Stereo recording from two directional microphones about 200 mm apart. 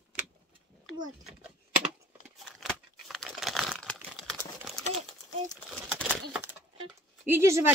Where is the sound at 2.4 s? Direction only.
Centre (ahead or behind).